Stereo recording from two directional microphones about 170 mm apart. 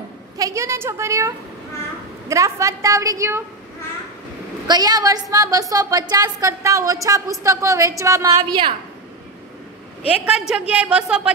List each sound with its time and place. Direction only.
0.4 s a woman's voice: 20° right (ahead or behind)
4.6 s a woman's voice: 25° right (ahead or behind)
10.7 s a woman's voice: 5° right (ahead or behind)